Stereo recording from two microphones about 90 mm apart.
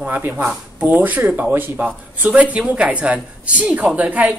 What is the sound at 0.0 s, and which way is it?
A man's voice, 20° right (ahead or behind).